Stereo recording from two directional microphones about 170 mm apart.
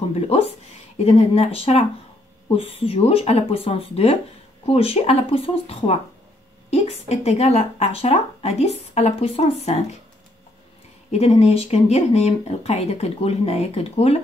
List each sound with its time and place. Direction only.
0.1 s a sound: 35° left (ahead or behind)
0.9 s speech: 40° left (ahead or behind)
11.1 s speech: 40° left (ahead or behind)